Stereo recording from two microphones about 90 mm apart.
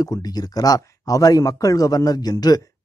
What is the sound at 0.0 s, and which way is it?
Speech, 45° left (ahead or behind).